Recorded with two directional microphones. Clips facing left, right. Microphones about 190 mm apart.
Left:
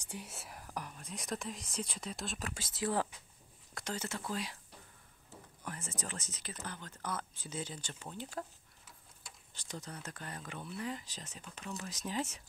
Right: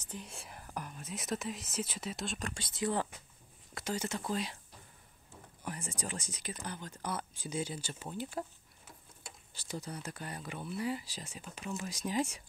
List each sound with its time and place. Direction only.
0.1 s speech: 5° left (ahead or behind)
3.7 s speech: 10° right (ahead or behind)
5.6 s speech: 15° right (ahead or behind)
9.5 s speech: 10° right (ahead or behind)